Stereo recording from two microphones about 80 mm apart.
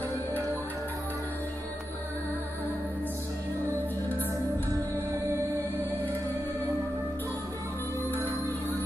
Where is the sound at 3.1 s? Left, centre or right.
Right.